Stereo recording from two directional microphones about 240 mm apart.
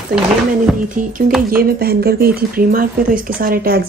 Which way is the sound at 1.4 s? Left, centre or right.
Right.